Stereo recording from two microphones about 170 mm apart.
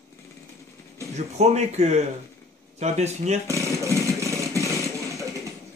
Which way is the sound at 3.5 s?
15° right (ahead or behind).